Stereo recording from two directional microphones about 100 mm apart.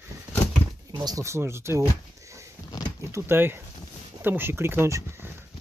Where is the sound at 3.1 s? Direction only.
25° right (ahead or behind).